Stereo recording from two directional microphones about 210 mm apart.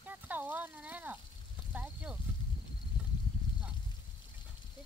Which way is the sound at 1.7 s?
5° right (ahead or behind).